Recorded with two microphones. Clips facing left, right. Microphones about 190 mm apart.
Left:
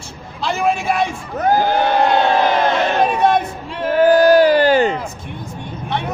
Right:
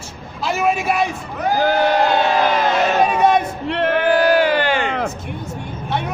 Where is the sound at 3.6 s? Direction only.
70° right (ahead or behind).